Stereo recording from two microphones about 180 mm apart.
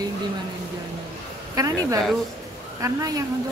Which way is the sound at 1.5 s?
20° right (ahead or behind).